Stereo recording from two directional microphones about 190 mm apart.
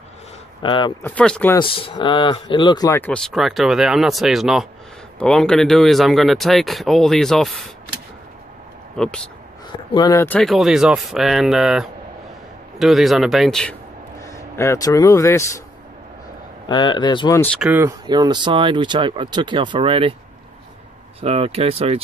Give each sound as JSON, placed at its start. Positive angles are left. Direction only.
{"t": 0.6, "sound": "speech", "side_deg": 25}
{"t": 1.0, "sound": "speech", "side_deg": 5}
{"t": 1.6, "sound": "speech", "side_deg": 30}
{"t": 8.9, "sound": "speech", "side_deg": 5}
{"t": 9.7, "sound": "speech", "side_deg": 20}
{"t": 14.2, "sound": "speech", "side_deg": 15}
{"t": 16.6, "sound": "speech", "side_deg": 25}
{"t": 17.6, "sound": "speech", "side_deg": -10}
{"t": 18.0, "sound": "speech", "side_deg": -20}
{"t": 21.2, "sound": "speech", "side_deg": -30}